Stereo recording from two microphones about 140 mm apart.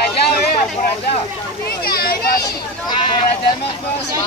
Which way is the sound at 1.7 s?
90° left.